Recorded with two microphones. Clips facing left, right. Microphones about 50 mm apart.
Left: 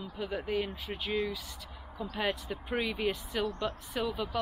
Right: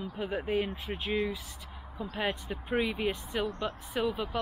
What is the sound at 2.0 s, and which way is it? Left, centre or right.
Speech, centre.